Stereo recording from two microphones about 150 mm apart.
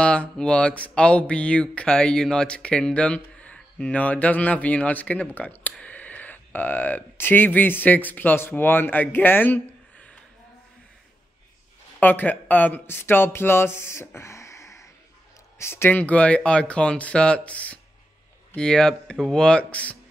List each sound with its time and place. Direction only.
0.0 s speech: 5° left (ahead or behind)
12.0 s speech: 10° left (ahead or behind)